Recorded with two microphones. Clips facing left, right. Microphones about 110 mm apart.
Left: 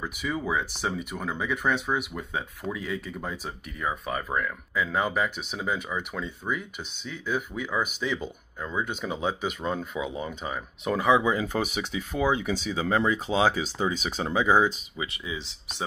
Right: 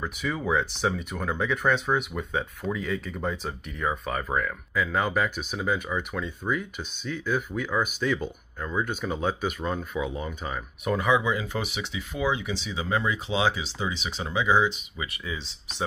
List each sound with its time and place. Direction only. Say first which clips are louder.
0.0 s speech: right 1 dB; 10° left (ahead or behind)
6.5 s speech: right 3 dB; 15° left (ahead or behind)
9.9 s speech: right 1 dB; 10° left (ahead or behind)
10.8 s speech: left 2 dB; 25° left (ahead or behind)
11.4 s speech: left 3 dB; 45° left (ahead or behind)
15.0 s speech: left 1 dB; 15° left (ahead or behind)